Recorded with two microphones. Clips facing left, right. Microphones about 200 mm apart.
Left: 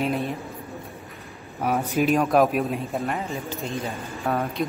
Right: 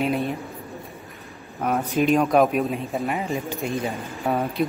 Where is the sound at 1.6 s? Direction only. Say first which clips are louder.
Right 1 dB; 5° left (ahead or behind).